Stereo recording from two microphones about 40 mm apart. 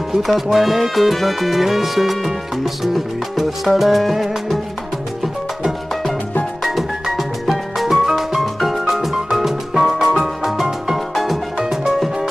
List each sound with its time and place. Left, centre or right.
0.1 s music: centre
6.6 s music: centre
11.6 s music: centre